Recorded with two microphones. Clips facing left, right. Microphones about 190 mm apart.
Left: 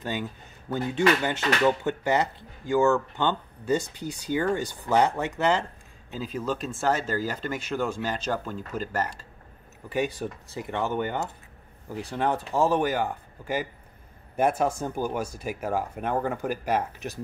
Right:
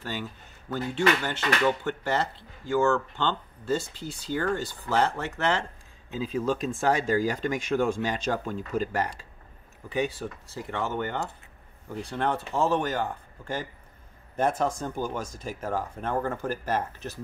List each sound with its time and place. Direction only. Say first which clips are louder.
0.0 s speech: left 3 dB; 15° left (ahead or behind)
6.3 s speech: right 3 dB; 10° right (ahead or behind)
9.8 s speech: left 1 dB; 10° left (ahead or behind)